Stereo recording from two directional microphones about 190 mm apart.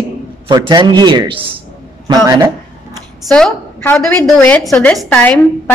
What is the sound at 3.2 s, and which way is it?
A woman's voice, 5° left (ahead or behind).